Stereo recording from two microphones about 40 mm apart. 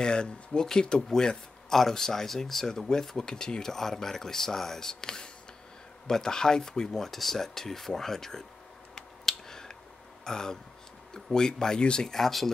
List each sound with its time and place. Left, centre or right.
0.0 s speech: left
8.9 s finger snapping: centre
10.2 s speech: centre
12.1 s speech: centre